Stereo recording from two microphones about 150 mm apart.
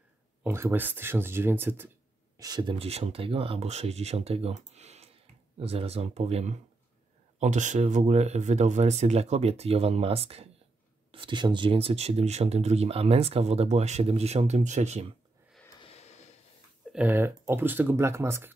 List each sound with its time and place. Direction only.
0.4 s speech: 15° right (ahead or behind)
2.3 s speech: 25° right (ahead or behind); by 15.0 s 50° right (ahead or behind)
15.8 s a sound: 45° left (ahead or behind)
16.9 s speech: 10° right (ahead or behind)